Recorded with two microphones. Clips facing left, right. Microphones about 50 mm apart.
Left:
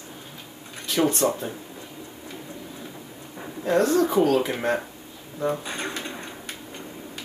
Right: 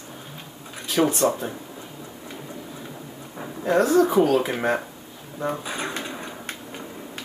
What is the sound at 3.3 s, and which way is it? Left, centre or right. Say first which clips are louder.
Speech: right 1 dB; centre.